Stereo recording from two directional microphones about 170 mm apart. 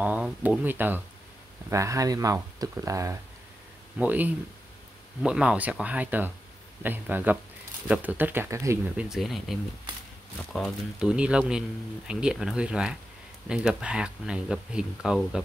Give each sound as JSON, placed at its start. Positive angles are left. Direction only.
{"t": 0.0, "sound": "speech", "side_deg": -10}